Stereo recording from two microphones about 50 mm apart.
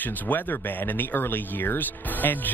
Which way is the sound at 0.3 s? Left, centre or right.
Left.